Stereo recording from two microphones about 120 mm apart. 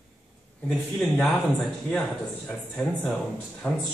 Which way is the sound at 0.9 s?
5° left (ahead or behind).